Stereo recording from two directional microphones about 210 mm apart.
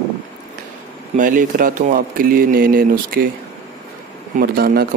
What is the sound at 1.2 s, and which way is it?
Speech, 40° right (ahead or behind).